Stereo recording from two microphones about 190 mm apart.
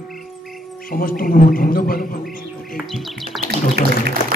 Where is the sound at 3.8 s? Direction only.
55° right (ahead or behind).